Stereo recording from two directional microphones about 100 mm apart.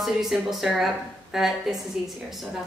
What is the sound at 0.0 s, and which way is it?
Speech, 5° right (ahead or behind).